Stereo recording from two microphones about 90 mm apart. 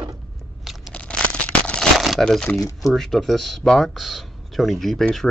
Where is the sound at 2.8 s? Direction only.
Centre (ahead or behind).